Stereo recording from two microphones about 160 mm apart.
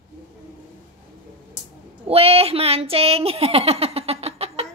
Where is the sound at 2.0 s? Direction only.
40° right (ahead or behind).